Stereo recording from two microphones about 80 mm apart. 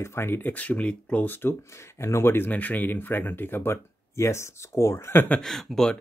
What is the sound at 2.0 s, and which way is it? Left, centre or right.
Speech, left.